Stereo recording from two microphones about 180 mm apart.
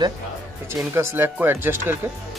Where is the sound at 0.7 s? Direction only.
15° right (ahead or behind).